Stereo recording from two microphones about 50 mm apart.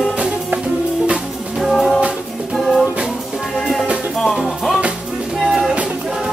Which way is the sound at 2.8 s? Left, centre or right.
Right.